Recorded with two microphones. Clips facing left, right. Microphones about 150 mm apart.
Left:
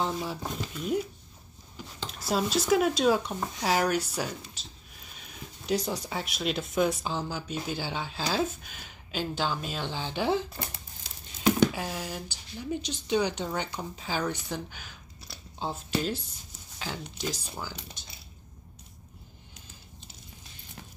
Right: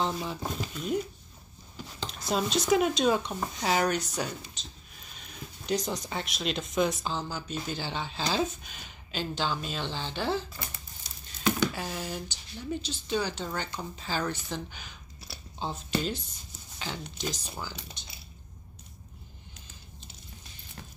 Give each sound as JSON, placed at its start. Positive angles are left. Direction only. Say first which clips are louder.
{"t": 0.1, "sound": "speech", "louder": "left 1 dB", "side_deg": 0}
{"t": 11.4, "sound": "a sound", "louder": "left 4 dB", "side_deg": 15}
{"t": 11.8, "sound": "speech", "louder": "even", "side_deg": 5}